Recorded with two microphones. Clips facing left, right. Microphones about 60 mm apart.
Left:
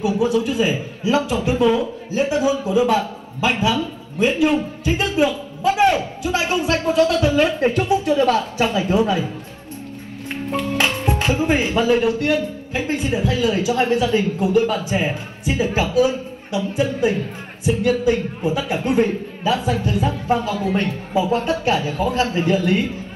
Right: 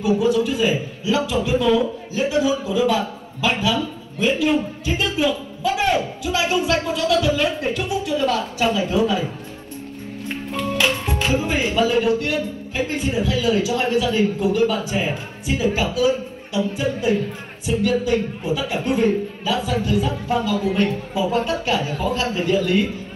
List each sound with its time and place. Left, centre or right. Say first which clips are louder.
0.2 s a man's voice: even; left
5.6 s a sound: left 5 dB; left
6.2 s speech: left 1 dB; left
10.2 s music: left 2 dB; left
12.7 s speech: left 1 dB; left